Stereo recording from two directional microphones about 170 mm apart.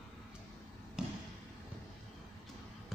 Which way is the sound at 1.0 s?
5° right (ahead or behind).